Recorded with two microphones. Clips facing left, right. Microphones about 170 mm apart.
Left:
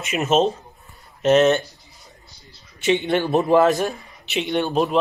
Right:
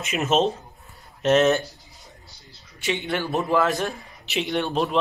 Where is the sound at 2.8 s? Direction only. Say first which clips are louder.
Left 7 dB; 20° left (ahead or behind).